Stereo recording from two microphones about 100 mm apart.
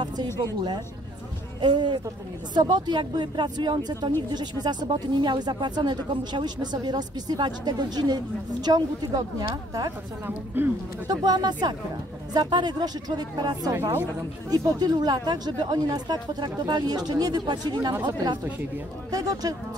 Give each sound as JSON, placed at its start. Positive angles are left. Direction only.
{"t": 1.6, "sound": "speech", "side_deg": -50}
{"t": 10.2, "sound": "a man's voice", "side_deg": -20}
{"t": 11.1, "sound": "speech", "side_deg": -45}
{"t": 19.1, "sound": "speech", "side_deg": -35}